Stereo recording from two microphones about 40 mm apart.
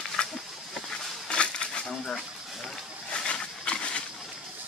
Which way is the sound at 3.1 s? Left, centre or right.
Left.